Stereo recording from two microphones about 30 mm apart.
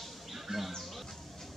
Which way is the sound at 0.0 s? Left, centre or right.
Centre.